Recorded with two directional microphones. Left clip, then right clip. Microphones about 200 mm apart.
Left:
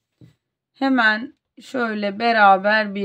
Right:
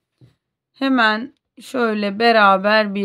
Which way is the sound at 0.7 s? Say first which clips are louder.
Right 1 dB; 20° right (ahead or behind).